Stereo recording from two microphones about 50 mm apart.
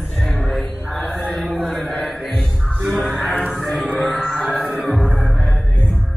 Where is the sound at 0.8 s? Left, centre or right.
Left.